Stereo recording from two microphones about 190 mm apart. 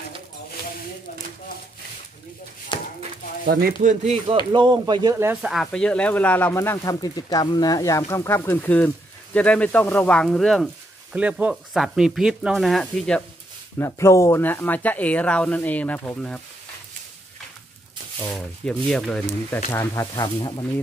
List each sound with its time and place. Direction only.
2.7 s a sound: 25° left (ahead or behind)
3.4 s speech: 55° right (ahead or behind)
3.9 s speech: 35° right (ahead or behind)
4.5 s speech: 25° right (ahead or behind)
5.1 s speech: 10° right (ahead or behind)
13.7 s speech: 15° left (ahead or behind)
18.2 s speech: 5° left (ahead or behind)
19.7 s speech: 15° left (ahead or behind)